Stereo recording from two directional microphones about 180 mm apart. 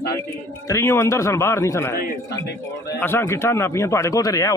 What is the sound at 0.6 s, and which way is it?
A man's voice, 15° left (ahead or behind).